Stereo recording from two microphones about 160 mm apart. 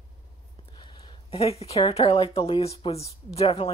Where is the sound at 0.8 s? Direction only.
30° left (ahead or behind).